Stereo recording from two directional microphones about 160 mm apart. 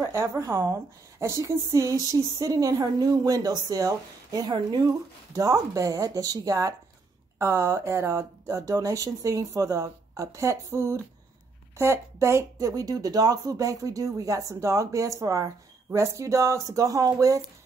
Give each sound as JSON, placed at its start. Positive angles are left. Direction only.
{"t": 0.0, "sound": "speech", "side_deg": -15}